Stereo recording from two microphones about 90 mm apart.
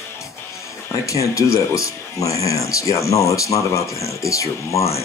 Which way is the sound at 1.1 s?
35° left (ahead or behind).